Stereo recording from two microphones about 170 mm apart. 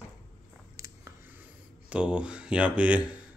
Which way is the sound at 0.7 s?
20° right (ahead or behind).